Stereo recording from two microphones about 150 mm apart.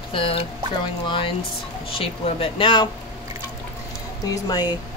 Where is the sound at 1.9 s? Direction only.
40° left (ahead or behind).